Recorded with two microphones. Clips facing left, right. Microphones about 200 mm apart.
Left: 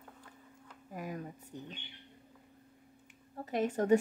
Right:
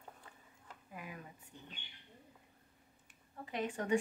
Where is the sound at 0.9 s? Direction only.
40° left (ahead or behind).